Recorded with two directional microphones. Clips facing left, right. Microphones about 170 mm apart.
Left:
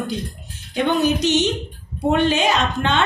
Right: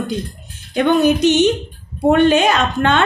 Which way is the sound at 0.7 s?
55° right (ahead or behind).